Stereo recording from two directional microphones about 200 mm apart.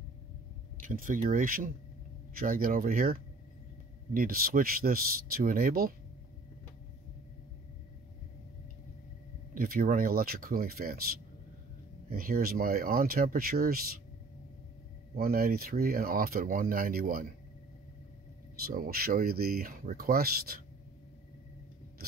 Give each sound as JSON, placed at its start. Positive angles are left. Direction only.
{"t": 0.8, "sound": "speech", "side_deg": -40}
{"t": 9.5, "sound": "speech", "side_deg": -45}
{"t": 15.1, "sound": "speech", "side_deg": -50}
{"t": 18.7, "sound": "speech", "side_deg": -45}